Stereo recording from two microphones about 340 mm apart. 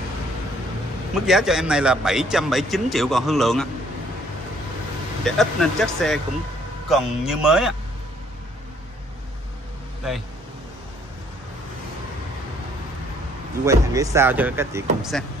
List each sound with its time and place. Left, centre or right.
1.2 s a man's voice: centre
5.2 s a man's voice: centre
13.7 s speech: centre